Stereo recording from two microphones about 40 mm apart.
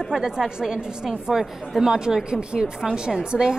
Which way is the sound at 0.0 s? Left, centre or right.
Centre.